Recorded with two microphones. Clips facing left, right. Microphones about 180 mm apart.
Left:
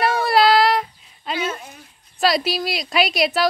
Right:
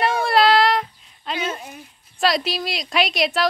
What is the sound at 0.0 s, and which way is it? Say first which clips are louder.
Child singing: left 1 dB; centre (ahead or behind).